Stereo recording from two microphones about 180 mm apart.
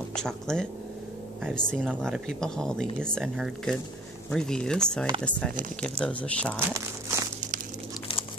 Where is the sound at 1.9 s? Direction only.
Centre (ahead or behind).